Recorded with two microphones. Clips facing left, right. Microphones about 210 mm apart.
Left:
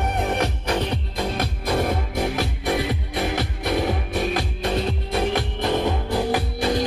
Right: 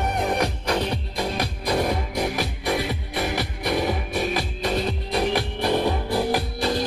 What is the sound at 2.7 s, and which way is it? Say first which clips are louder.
Music: left 2 dB; 20° left (ahead or behind).